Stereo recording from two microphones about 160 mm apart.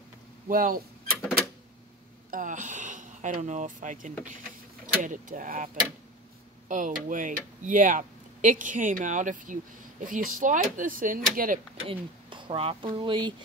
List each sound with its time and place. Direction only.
0.5 s speech: 60° right (ahead or behind)
2.3 s speech: 55° right (ahead or behind)
6.7 s speech: 55° right (ahead or behind)
11.8 s speech: 35° right (ahead or behind)